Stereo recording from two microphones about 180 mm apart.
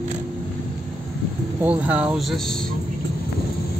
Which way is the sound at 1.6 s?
10° right (ahead or behind).